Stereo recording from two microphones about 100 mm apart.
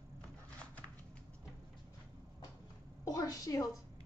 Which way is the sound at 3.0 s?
40° left (ahead or behind).